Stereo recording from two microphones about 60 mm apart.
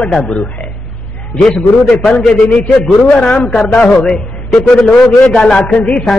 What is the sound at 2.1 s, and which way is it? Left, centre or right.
A man's voice, centre.